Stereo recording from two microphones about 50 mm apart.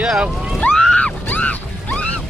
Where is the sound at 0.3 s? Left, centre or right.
Centre.